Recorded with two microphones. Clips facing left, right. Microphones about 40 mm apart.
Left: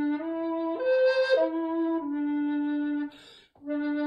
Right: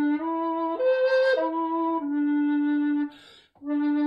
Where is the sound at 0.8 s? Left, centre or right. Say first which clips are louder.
Right 2 dB; right.